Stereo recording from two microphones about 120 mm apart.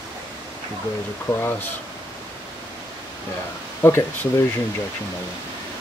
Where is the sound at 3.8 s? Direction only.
20° left (ahead or behind).